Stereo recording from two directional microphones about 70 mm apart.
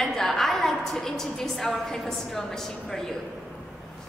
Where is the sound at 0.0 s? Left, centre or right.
Centre.